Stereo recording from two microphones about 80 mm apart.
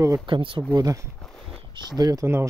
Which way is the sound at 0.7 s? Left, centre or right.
Right.